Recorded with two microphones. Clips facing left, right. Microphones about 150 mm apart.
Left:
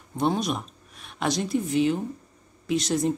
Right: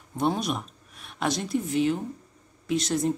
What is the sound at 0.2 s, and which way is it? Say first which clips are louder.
Speech: left 1 dB; 5° right (ahead or behind).